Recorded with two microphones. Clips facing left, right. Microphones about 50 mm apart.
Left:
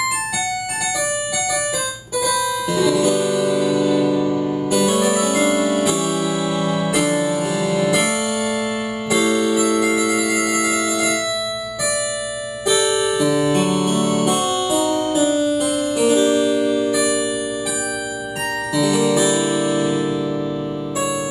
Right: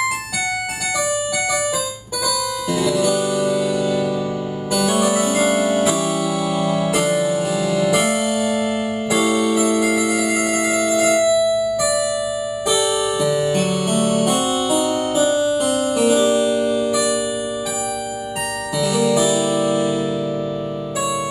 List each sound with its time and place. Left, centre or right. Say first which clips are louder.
2.7 s music: left 1 dB; centre
9.8 s music: even; centre
12.6 s music: left 2 dB; centre
18.8 s music: even; centre